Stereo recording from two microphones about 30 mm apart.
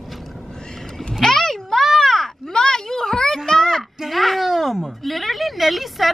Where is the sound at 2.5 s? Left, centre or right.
Centre.